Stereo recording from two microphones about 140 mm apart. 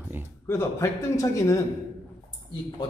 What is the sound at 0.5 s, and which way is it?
A man's voice, 20° left (ahead or behind).